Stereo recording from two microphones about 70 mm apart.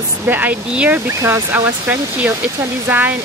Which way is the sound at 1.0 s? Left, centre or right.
Right.